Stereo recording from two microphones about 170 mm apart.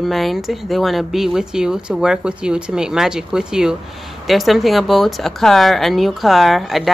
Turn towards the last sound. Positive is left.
turn(degrees=0)  # may be behind; listen again after turning